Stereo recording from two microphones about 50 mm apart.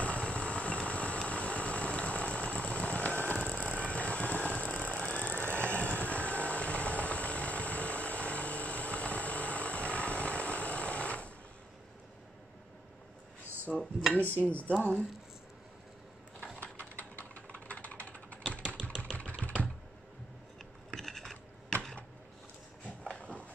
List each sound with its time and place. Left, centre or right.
0.0 s vehicle: left
3.3 s ratchet: centre
4.9 s vehicle: left
13.7 s dishes: centre
14.2 s speech: right
14.8 s speech: left
16.5 s typing: left
19.1 s typing: left
20.9 s a sound: centre
23.0 s a sound: left